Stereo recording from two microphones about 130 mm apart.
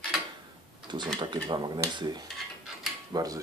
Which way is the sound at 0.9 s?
35° right (ahead or behind).